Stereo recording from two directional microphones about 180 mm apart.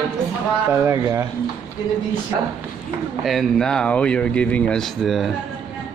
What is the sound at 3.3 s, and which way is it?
A man's voice, centre (ahead or behind).